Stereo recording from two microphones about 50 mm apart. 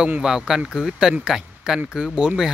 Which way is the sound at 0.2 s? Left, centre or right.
Centre.